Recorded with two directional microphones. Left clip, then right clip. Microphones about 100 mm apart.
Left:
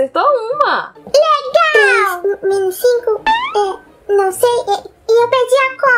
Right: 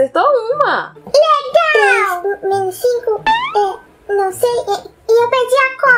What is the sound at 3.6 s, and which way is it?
A child's voice, 45° left (ahead or behind).